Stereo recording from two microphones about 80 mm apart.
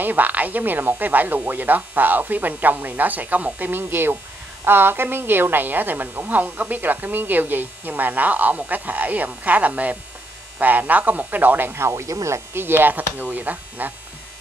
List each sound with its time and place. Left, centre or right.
0.0 s a woman's voice: right
12.5 s a woman's voice: right